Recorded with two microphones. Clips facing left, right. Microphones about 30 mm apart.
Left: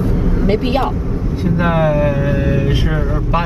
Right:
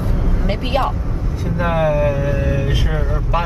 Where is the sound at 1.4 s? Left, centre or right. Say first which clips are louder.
Left 3 dB; centre.